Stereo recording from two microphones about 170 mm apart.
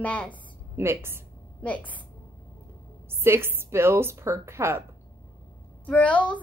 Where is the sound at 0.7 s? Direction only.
15° right (ahead or behind).